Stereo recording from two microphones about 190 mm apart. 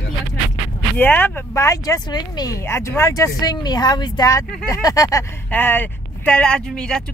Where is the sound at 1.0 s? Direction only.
10° left (ahead or behind).